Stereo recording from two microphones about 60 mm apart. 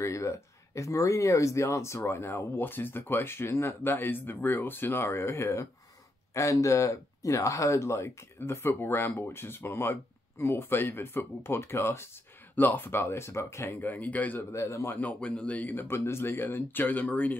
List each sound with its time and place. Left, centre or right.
0.0 s speech: left
6.3 s speech: left
12.5 s speech: left
13.7 s a man's voice: left
14.5 s speech: left
14.9 s a man's voice: left
15.7 s speech: left